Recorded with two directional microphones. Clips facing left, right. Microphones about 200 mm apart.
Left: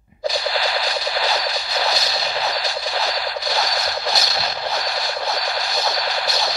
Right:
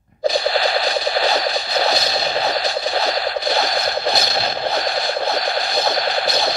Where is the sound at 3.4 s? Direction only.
60° right (ahead or behind).